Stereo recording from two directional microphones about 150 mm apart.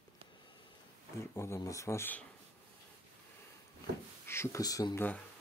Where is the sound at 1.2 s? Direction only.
15° left (ahead or behind).